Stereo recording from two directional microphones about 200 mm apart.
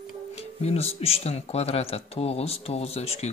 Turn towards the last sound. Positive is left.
turn(degrees=30)  # may be behind; listen again after turning